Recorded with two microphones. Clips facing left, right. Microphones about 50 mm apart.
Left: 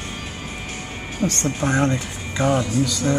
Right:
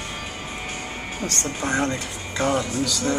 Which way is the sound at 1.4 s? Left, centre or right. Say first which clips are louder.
Left 3 dB; centre.